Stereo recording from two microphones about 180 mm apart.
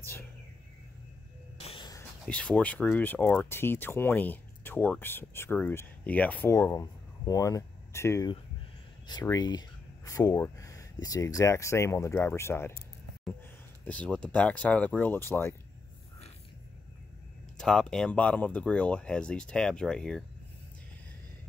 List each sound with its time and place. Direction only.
1.6 s a sound: 30° left (ahead or behind)
2.2 s speech: 5° left (ahead or behind)
13.8 s speech: 5° left (ahead or behind)
17.6 s speech: 5° left (ahead or behind)